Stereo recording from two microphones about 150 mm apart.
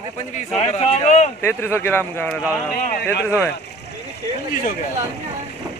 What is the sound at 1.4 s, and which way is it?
A man's voice, 15° left (ahead or behind).